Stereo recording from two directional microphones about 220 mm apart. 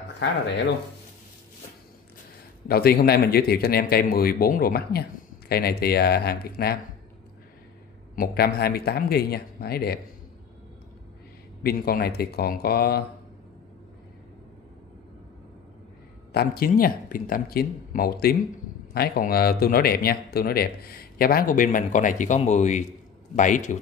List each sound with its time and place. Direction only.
0.2 s a man's voice: 55° left (ahead or behind)
2.7 s a man's voice: 45° left (ahead or behind)
8.2 s a man's voice: 45° left (ahead or behind)
11.6 s a man's voice: 45° left (ahead or behind)
16.3 s a man's voice: 45° left (ahead or behind)